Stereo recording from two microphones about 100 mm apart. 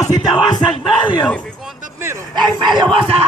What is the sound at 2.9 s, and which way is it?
Speech, 70° right (ahead or behind).